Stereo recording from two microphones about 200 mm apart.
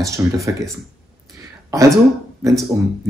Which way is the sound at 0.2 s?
15° right (ahead or behind).